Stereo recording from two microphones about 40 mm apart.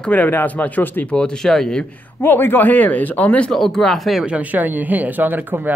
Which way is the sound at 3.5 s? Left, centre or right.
Centre.